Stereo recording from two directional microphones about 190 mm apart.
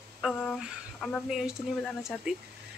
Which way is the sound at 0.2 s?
Centre (ahead or behind).